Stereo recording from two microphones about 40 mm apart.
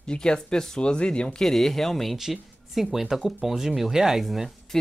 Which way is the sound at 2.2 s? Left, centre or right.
Centre.